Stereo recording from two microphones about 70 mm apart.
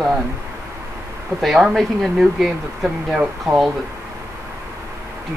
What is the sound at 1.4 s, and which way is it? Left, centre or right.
Speech, centre.